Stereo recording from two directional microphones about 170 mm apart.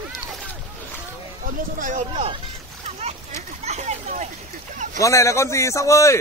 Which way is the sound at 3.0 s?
40° right (ahead or behind).